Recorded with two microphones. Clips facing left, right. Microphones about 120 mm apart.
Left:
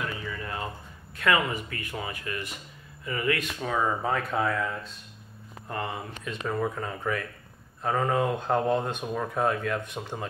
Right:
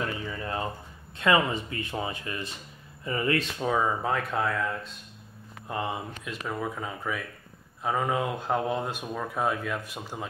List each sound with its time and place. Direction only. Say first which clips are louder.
0.2 s a sound: right 2 dB; 25° right (ahead or behind)
1.1 s speech: right 2 dB; 25° right (ahead or behind)
3.7 s speech: left 1 dB; centre (ahead or behind)
5.7 s speech: right 2 dB; 15° right (ahead or behind)
6.4 s speech: left 3 dB; 5° right (ahead or behind)